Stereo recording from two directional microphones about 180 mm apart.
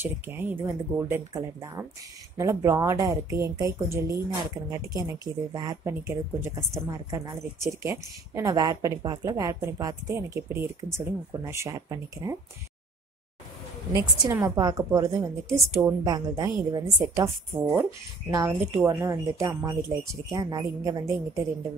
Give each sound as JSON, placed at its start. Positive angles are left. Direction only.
{"t": 0.0, "sound": "speech", "side_deg": -10}
{"t": 13.9, "sound": "a woman's voice", "side_deg": -20}